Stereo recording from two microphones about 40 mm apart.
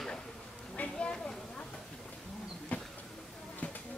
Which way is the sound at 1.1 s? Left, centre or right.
Left.